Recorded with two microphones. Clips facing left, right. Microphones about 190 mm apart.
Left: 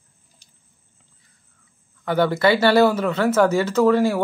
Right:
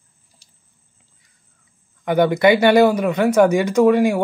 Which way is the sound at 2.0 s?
15° right (ahead or behind).